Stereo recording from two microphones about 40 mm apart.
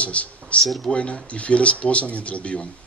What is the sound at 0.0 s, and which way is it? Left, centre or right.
A woman's voice, left.